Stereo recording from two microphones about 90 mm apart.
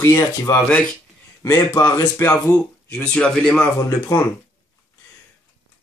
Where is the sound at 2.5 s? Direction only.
10° left (ahead or behind).